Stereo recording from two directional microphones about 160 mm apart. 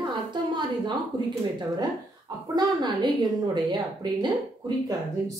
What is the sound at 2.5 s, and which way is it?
Speech, 25° right (ahead or behind).